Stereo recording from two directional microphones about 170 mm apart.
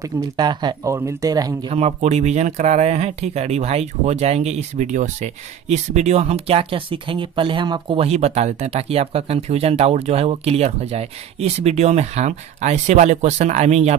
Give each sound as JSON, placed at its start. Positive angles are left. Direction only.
{"t": 0.0, "sound": "speech", "side_deg": -25}
{"t": 1.7, "sound": "speech", "side_deg": -40}